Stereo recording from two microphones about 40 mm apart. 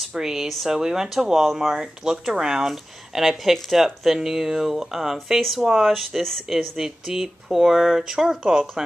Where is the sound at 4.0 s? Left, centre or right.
Centre.